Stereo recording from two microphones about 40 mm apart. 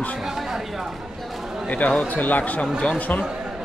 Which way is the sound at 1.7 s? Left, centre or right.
Left.